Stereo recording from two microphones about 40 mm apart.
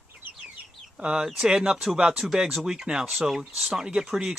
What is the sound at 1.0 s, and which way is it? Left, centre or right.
Speech, right.